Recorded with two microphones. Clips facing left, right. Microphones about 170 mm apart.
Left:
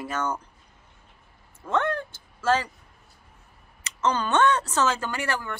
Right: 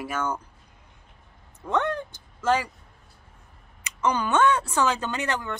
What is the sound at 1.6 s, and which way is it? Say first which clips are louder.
Speech: even; 15° right (ahead or behind).